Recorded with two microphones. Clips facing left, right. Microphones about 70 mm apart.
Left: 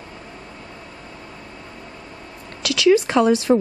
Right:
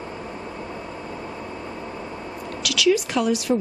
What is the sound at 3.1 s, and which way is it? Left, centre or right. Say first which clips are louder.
Speech: left 6 dB; left.